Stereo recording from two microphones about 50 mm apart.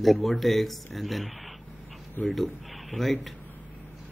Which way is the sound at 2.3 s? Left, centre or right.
Centre.